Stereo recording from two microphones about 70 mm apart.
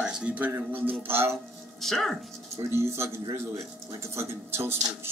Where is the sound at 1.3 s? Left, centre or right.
Centre.